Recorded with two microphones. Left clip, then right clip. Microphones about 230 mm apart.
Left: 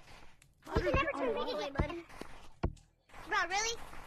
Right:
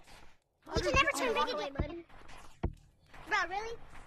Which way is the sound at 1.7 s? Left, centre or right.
Left.